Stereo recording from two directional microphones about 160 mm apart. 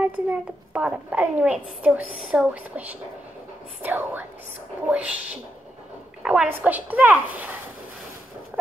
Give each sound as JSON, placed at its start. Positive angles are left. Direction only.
{"t": 0.0, "sound": "a child's voice", "side_deg": -5}